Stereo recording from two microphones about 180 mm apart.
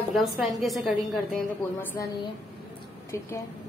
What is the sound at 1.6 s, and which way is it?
Speech, 10° left (ahead or behind).